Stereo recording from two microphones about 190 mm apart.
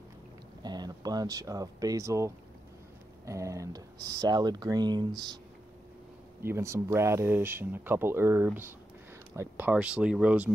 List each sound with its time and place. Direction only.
0.6 s speech: 20° right (ahead or behind)
6.4 s speech: 15° right (ahead or behind)